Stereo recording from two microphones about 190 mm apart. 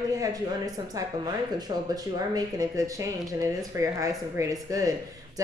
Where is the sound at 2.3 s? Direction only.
20° right (ahead or behind).